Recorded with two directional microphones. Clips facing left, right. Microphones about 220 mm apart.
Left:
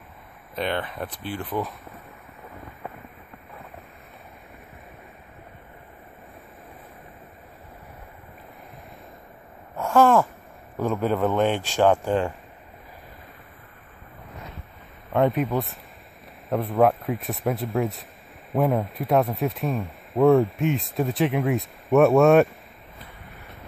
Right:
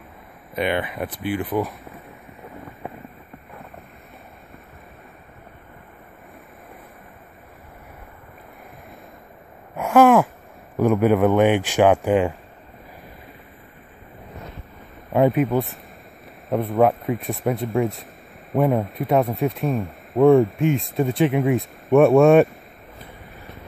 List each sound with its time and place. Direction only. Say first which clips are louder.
0.6 s speech: right 4 dB; 10° right (ahead or behind)
9.8 s a sound: right 4 dB; 15° right (ahead or behind)
10.8 s speech: right 6 dB; 15° right (ahead or behind)
15.1 s speech: right 4 dB; centre (ahead or behind)